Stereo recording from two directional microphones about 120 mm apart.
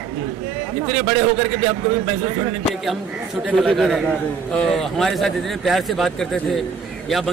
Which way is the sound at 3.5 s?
Centre (ahead or behind).